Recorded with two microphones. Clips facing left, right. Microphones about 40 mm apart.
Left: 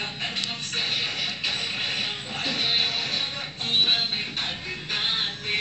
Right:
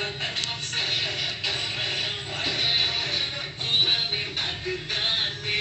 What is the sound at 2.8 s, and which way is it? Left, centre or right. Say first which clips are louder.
Music: even; right.